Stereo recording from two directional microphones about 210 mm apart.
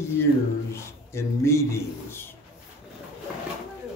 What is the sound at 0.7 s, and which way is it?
Speech, 10° left (ahead or behind).